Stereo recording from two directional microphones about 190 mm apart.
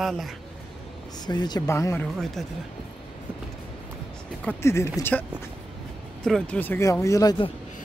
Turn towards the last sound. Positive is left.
turn(degrees=25)  # may be behind; listen again after turning